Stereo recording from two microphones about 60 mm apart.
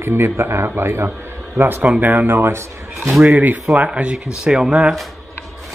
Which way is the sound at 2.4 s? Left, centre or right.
Right.